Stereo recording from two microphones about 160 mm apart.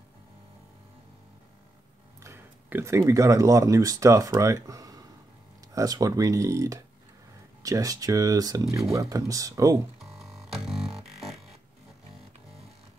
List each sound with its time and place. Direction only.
2.2 s speech: 15° right (ahead or behind)
10.1 s music: centre (ahead or behind)